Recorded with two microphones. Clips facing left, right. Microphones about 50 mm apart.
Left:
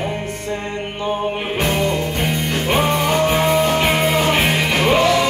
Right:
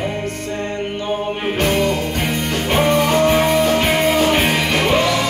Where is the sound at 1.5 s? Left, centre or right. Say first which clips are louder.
Right 2 dB; centre.